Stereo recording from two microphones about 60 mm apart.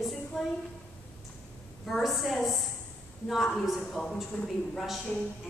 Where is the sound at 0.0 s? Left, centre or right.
Centre.